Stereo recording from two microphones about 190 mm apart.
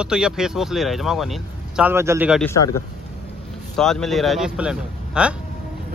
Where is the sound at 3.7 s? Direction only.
5° left (ahead or behind).